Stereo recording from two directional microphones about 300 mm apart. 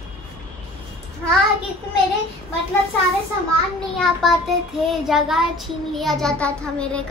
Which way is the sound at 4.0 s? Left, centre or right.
Centre.